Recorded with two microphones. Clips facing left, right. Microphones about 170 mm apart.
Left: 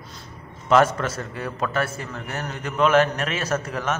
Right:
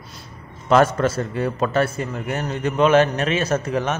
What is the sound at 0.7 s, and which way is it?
A man's voice, 35° right (ahead or behind).